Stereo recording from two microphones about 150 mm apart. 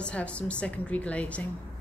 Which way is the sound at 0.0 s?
5° left (ahead or behind).